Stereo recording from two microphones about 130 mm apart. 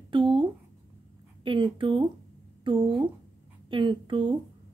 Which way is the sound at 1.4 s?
40° right (ahead or behind).